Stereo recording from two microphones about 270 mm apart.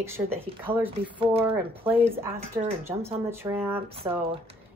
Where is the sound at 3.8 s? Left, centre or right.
Right.